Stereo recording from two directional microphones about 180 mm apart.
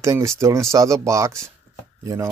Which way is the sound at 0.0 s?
15° right (ahead or behind).